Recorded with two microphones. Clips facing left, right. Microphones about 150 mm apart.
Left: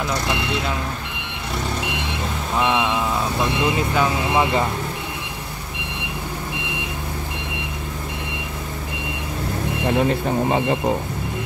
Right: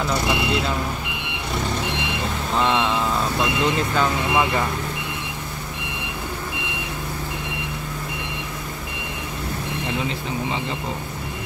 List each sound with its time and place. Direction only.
0.1 s vehicle: 10° right (ahead or behind)
2.5 s speech: 10° left (ahead or behind)
9.8 s speech: 50° left (ahead or behind)